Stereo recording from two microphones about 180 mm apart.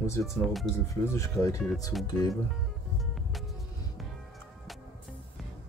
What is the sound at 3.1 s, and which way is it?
Music, centre (ahead or behind).